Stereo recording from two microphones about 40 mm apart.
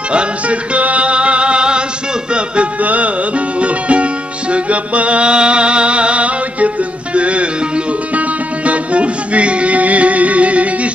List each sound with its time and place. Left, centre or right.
0.1 s music: right